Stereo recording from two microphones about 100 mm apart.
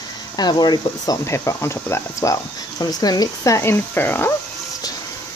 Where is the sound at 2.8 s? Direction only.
40° left (ahead or behind); by 4.3 s 20° left (ahead or behind).